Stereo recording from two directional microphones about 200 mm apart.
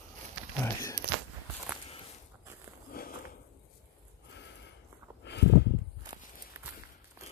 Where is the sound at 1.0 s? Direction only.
50° right (ahead or behind).